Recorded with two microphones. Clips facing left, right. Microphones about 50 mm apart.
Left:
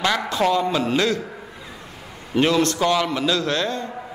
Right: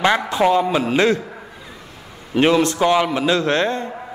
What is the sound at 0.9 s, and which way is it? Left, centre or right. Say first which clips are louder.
Speech: right 6 dB; right.